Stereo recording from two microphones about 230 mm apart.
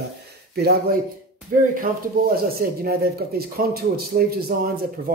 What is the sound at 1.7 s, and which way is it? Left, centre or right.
A man's voice, right.